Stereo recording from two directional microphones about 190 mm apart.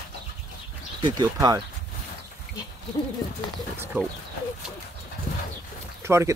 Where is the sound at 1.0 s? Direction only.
20° right (ahead or behind).